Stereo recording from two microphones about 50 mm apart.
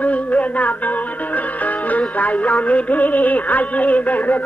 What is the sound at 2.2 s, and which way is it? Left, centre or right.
Music, left.